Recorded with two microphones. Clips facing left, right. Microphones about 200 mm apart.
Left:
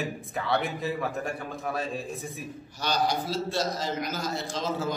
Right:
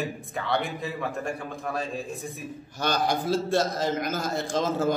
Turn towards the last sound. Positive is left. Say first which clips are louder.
# right 5 dB
turn(degrees=-50)  # may be behind; listen again after turning